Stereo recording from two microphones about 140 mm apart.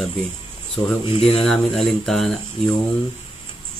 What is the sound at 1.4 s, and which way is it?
Speech, 5° left (ahead or behind).